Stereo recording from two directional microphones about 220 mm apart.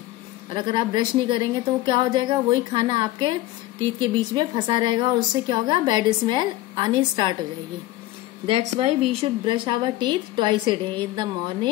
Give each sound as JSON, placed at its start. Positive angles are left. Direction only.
{"t": 0.5, "sound": "a woman's voice", "side_deg": -20}
{"t": 4.4, "sound": "a woman's voice", "side_deg": -20}
{"t": 8.7, "sound": "a woman's voice", "side_deg": -25}